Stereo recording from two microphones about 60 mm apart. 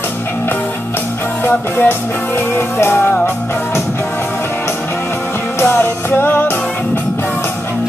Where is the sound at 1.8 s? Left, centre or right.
Left.